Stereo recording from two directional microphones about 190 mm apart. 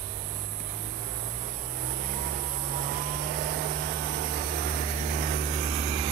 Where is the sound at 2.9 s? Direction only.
50° right (ahead or behind); by 6.0 s 35° right (ahead or behind).